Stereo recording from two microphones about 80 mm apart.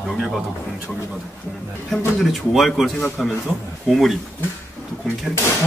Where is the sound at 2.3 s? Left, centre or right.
Centre.